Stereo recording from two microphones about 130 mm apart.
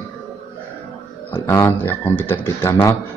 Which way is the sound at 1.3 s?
20° left (ahead or behind).